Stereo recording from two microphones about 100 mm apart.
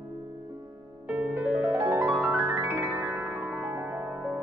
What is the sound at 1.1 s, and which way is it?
Music, 20° right (ahead or behind).